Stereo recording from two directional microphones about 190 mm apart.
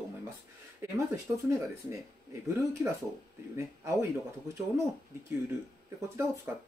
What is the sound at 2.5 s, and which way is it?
Speech, 15° right (ahead or behind).